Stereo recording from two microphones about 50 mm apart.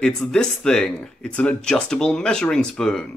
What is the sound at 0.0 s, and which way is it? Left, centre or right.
Speech, centre.